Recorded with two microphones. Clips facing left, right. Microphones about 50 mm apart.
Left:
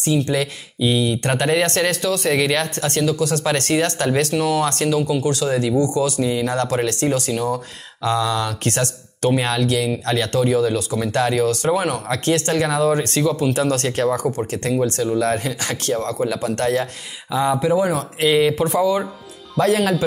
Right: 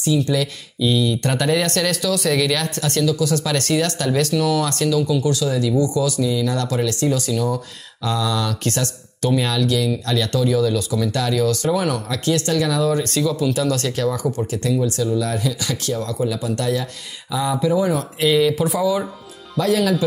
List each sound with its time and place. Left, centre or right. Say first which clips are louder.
0.0 s speech: even; left
2.9 s speech: right 2 dB; left
8.6 s speech: left 1 dB; left
17.3 s speech: left 3 dB; left
17.8 s speech: even; left
18.6 s speech: left 2 dB; centre
19.6 s speech: left 1 dB; left